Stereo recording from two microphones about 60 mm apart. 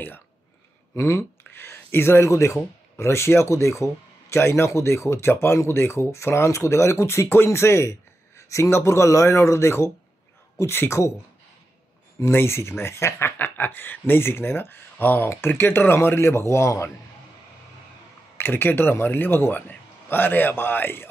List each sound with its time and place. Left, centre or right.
0.9 s speech: left
1.4 s speech: left
10.9 s speech: left
12.3 s speech: left
13.4 s a man's voice: left
18.4 s a man's voice: left